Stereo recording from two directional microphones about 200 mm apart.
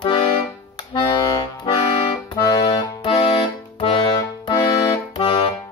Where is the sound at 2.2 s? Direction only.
20° left (ahead or behind).